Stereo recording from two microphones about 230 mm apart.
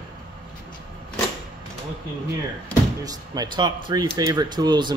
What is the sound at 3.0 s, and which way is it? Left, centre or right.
Speech, centre.